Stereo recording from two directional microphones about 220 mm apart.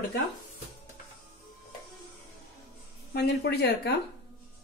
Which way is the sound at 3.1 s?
50° left (ahead or behind).